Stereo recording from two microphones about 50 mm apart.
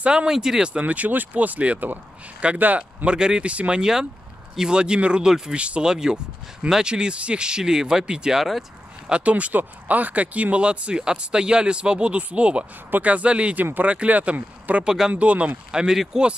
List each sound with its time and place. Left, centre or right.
0.0 s speech: right
0.7 s speech: right
3.1 s speech: centre
8.4 s speech: centre
9.1 s speech: right
14.9 s speech: centre
15.7 s speech: centre